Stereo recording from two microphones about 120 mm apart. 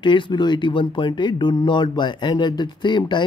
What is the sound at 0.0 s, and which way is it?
Speech, 40° left (ahead or behind).